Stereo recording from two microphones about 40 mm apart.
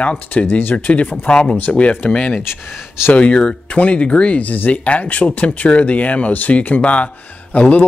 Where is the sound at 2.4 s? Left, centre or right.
Left.